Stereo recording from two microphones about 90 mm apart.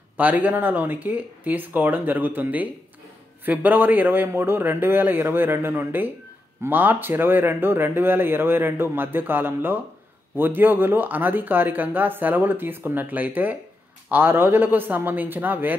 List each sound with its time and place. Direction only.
0.2 s speech: 20° right (ahead or behind)